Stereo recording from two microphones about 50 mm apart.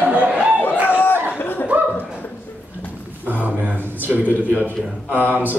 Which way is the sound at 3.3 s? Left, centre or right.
Right.